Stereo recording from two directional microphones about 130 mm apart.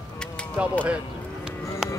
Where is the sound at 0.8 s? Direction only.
10° right (ahead or behind).